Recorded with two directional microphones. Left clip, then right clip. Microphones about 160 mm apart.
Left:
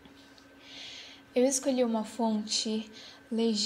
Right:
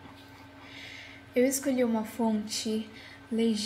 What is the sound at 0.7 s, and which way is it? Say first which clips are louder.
Music: even; 35° left (ahead or behind).